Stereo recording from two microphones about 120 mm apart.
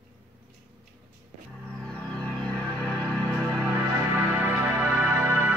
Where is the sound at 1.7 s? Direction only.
5° left (ahead or behind).